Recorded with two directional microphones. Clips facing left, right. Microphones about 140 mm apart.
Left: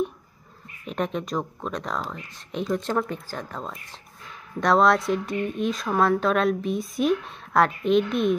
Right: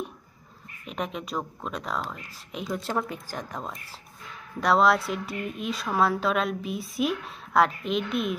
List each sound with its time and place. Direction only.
0.8 s a woman's voice: centre (ahead or behind)